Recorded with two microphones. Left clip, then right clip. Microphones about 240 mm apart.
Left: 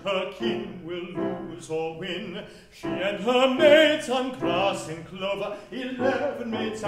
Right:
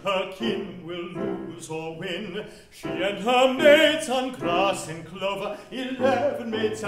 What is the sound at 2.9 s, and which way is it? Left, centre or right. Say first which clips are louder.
Music: right 2 dB; right.